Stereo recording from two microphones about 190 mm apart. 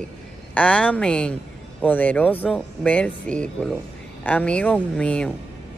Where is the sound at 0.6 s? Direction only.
5° left (ahead or behind).